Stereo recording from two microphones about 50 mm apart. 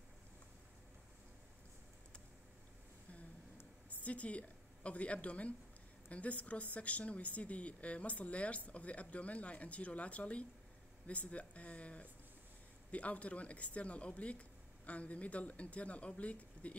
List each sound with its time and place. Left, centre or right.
4.0 s a woman's voice: left